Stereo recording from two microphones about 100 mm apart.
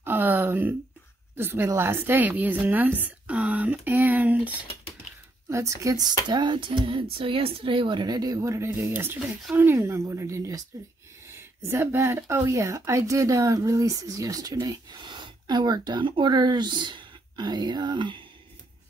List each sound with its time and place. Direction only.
0.0 s a sound: 20° right (ahead or behind)
1.3 s a woman's voice: 25° right (ahead or behind)
5.5 s speech: 30° right (ahead or behind)
6.2 s speech: 50° right (ahead or behind); by 9.2 s 25° right (ahead or behind)
9.2 s a woman's voice: 5° right (ahead or behind)
9.6 s speech: 25° right (ahead or behind)
11.6 s speech: 25° right (ahead or behind); by 18.2 s 50° right (ahead or behind)